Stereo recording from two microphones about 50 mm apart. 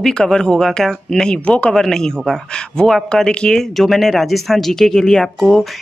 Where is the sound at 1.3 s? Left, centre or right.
Left.